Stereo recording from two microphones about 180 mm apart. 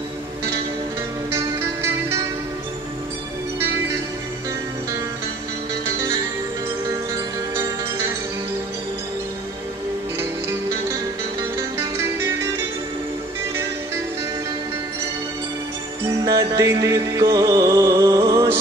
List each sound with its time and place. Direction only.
1.3 s music: 15° right (ahead or behind)
16.3 s music: 20° right (ahead or behind)